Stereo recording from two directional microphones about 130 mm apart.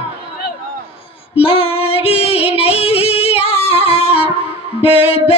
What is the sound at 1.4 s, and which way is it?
Female singing, 45° left (ahead or behind).